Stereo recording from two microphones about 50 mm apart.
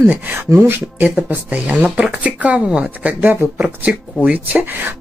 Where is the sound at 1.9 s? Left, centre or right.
Centre.